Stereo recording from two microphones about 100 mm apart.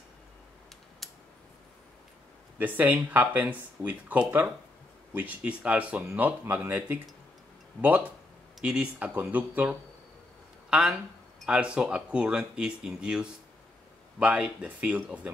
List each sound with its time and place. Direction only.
1.0 s typing: centre (ahead or behind)
2.6 s speech: 15° right (ahead or behind)